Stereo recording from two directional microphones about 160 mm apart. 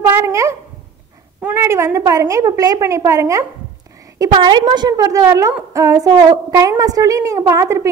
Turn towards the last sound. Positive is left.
turn(degrees=-20)  # may be behind; listen again after turning